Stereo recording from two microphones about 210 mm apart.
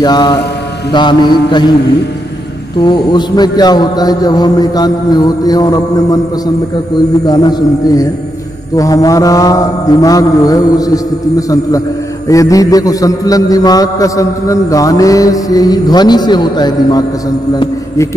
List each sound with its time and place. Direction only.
0.0 s a man's voice: 20° left (ahead or behind)
2.8 s a man's voice: 20° left (ahead or behind)
8.7 s music: 15° left (ahead or behind)